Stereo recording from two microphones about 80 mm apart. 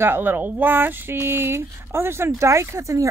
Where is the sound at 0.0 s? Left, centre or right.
Right.